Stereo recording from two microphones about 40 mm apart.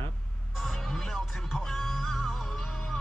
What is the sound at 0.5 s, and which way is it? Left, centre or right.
Music, centre.